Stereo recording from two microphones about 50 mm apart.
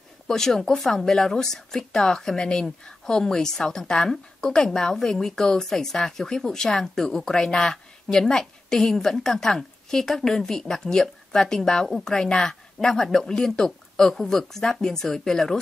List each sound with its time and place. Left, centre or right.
0.3 s a woman's voice: centre